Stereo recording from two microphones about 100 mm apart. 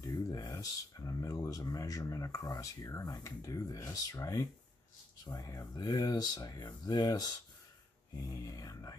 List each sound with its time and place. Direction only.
0.3 s speech: 35° left (ahead or behind)